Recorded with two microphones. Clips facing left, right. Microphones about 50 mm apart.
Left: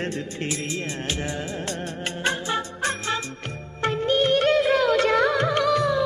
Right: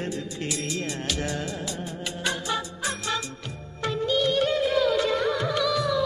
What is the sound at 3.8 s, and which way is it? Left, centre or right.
Music of bollywood, left.